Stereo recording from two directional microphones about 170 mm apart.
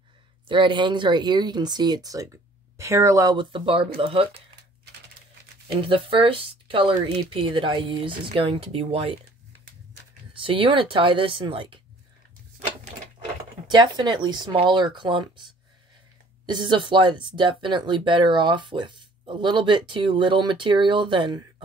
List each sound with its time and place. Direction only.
0.5 s speech: 30° right (ahead or behind)
5.8 s speech: 30° right (ahead or behind)
10.3 s speech: 30° right (ahead or behind)
13.7 s speech: 25° right (ahead or behind)
16.4 s speech: 25° right (ahead or behind)